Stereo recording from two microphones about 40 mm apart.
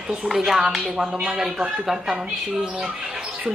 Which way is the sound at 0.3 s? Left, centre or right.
Centre.